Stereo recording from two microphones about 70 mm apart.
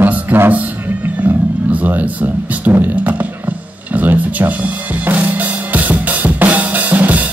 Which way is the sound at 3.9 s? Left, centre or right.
Right.